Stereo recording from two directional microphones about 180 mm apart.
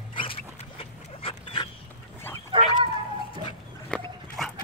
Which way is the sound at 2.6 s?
30° right (ahead or behind).